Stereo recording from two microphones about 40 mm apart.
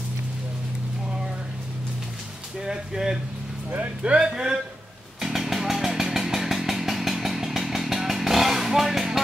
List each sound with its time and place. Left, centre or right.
2.6 s speech: centre
4.0 s speech: right
4.3 s speech: centre
5.2 s motorcycle: centre
6.1 s chainsaw: centre